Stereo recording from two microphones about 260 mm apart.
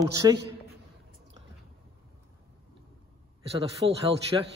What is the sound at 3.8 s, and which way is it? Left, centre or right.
Speech, right.